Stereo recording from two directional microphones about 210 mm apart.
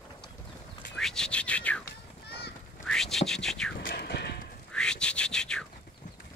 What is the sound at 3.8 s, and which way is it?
Music, 50° left (ahead or behind).